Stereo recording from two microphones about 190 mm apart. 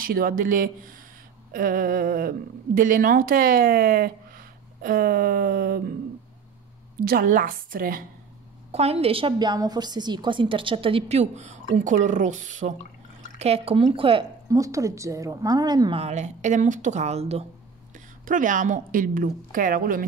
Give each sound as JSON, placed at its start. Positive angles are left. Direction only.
{"t": 0.0, "sound": "a woman's voice", "side_deg": -50}
{"t": 7.0, "sound": "a woman's voice", "side_deg": -50}
{"t": 8.7, "sound": "a woman's voice", "side_deg": -30}
{"t": 16.0, "sound": "a woman's voice", "side_deg": -35}